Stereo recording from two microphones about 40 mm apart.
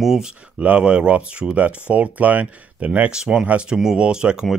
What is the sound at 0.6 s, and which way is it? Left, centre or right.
Speech, right.